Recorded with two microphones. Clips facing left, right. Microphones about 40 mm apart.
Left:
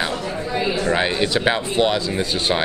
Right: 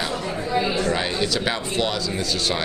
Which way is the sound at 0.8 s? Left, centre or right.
Left.